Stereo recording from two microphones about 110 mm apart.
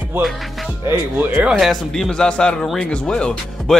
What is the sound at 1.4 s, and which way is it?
Speech, centre (ahead or behind).